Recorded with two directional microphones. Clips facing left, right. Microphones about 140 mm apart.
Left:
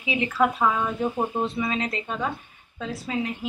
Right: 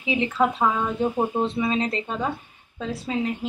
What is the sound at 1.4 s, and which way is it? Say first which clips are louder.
Speech: right 3 dB; 30° right (ahead or behind).